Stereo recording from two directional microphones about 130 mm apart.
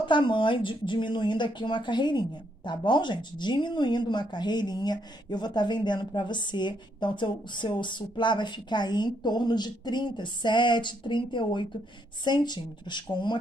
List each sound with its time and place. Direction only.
0.0 s speech: 40° left (ahead or behind)